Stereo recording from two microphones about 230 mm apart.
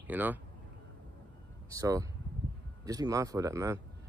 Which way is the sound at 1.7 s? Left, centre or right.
Centre.